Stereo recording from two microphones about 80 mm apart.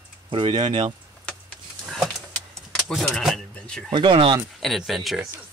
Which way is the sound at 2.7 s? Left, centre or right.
Centre.